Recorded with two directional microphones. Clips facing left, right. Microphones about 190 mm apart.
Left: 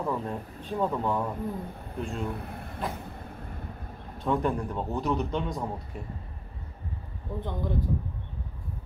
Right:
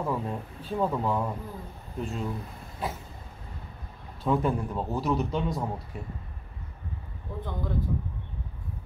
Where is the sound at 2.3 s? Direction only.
60° left (ahead or behind).